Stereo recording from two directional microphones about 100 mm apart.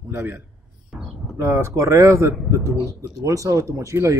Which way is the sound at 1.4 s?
30° right (ahead or behind).